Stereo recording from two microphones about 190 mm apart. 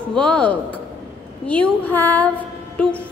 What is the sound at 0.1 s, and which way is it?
A woman's voice, 5° left (ahead or behind).